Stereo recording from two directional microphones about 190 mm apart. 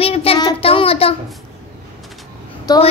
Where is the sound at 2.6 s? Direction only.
20° left (ahead or behind).